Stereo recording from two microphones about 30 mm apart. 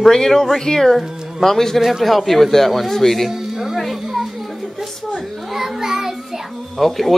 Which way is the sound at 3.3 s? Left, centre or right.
Centre.